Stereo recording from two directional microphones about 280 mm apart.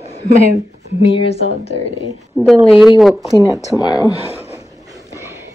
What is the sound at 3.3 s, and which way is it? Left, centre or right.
Speech, centre.